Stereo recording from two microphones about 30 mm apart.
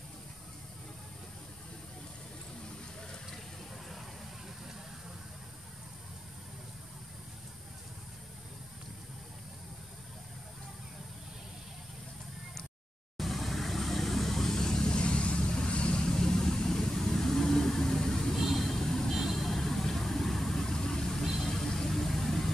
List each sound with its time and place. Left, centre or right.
13.2 s vehicle: centre; by 16.1 s left
16.1 s vehicle: centre
18.3 s vehicle: centre
18.6 s vehicle: centre
19.0 s vehicle: centre
20.6 s vehicle: centre
21.2 s vehicle: centre